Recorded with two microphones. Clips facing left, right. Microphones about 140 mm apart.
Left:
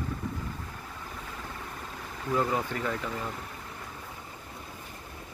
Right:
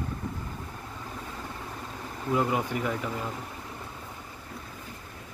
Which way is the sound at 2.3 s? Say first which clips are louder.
Right 2 dB; 10° right (ahead or behind).